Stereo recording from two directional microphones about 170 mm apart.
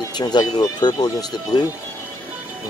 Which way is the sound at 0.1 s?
25° left (ahead or behind).